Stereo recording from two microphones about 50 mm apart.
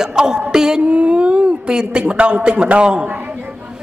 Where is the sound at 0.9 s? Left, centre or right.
Right.